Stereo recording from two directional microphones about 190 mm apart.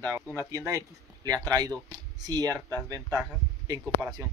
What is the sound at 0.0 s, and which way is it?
Speech, 15° right (ahead or behind).